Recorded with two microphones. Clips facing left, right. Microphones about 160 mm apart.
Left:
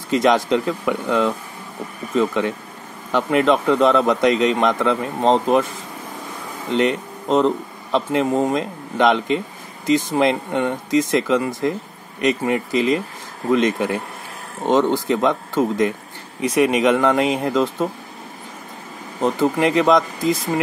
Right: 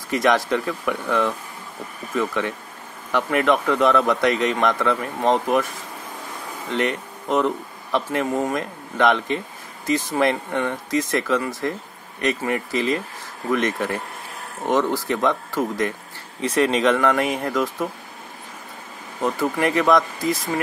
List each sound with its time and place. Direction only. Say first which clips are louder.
0.1 s speech: left 3 dB; 20° left (ahead or behind)
6.7 s speech: left 5 dB; 20° left (ahead or behind)
19.2 s speech: left 4 dB; 25° left (ahead or behind)